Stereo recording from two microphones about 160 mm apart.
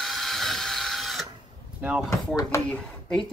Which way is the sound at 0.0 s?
Centre (ahead or behind).